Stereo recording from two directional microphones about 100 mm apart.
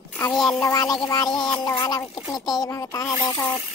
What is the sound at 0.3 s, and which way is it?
Speech, 5° left (ahead or behind).